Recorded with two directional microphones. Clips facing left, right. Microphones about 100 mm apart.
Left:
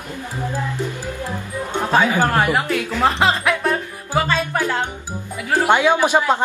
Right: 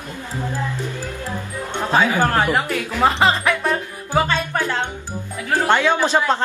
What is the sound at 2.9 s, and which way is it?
Music, centre (ahead or behind).